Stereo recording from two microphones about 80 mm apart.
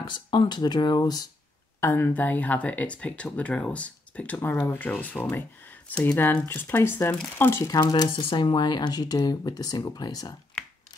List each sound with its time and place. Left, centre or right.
0.0 s speech: left
1.8 s speech: left
7.6 s speech: left
8.2 s speech: left